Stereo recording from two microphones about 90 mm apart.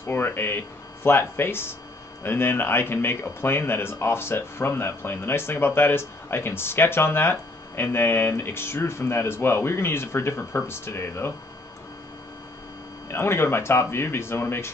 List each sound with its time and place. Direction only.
0.0 s speech: 25° left (ahead or behind)
13.1 s speech: 25° left (ahead or behind)